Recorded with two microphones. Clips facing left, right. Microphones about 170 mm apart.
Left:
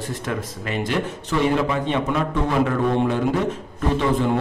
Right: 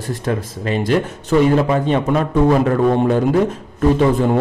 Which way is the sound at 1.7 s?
40° right (ahead or behind).